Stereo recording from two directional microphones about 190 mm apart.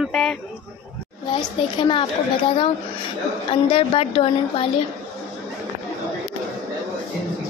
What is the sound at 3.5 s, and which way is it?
A woman's voice, 30° left (ahead or behind).